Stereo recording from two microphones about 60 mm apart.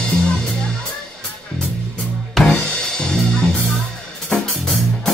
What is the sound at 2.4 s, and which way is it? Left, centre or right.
Music, centre.